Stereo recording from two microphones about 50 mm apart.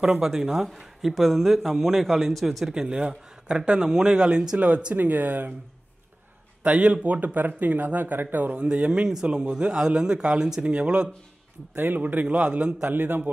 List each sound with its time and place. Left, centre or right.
0.2 s speech: centre
2.6 s a man's voice: centre
4.9 s speech: right
6.6 s speech: right
8.6 s a man's voice: centre
11.7 s speech: right
12.9 s a man's voice: right